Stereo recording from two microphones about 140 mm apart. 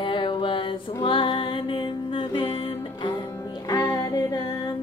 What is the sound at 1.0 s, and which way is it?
Music, 35° left (ahead or behind).